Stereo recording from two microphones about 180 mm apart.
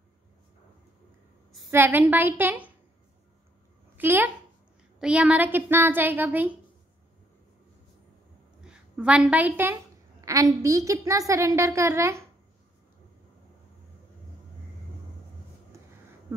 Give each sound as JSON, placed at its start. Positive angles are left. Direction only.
{"t": 1.7, "sound": "a woman's voice", "side_deg": -10}
{"t": 3.9, "sound": "a woman's voice", "side_deg": -10}
{"t": 8.5, "sound": "a woman's voice", "side_deg": -5}
{"t": 16.3, "sound": "a sound", "side_deg": -10}